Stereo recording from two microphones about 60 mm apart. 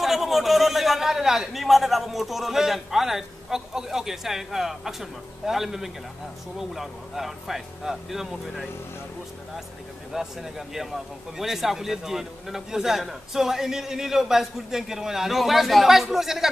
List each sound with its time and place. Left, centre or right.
0.0 s a man's voice: centre
10.1 s a man's voice: centre